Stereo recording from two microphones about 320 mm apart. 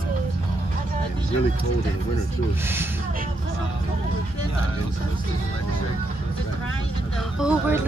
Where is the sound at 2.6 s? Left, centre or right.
Centre.